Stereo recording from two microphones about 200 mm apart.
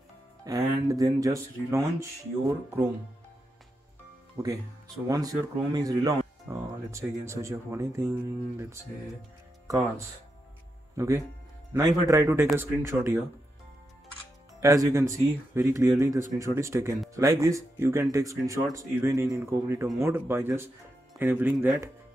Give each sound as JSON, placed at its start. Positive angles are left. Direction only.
{"t": 0.5, "sound": "speech", "side_deg": -15}
{"t": 5.0, "sound": "speech", "side_deg": -15}
{"t": 9.7, "sound": "speech", "side_deg": -15}
{"t": 14.6, "sound": "speech", "side_deg": -15}